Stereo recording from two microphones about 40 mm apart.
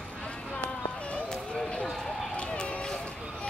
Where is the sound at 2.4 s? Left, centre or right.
Left.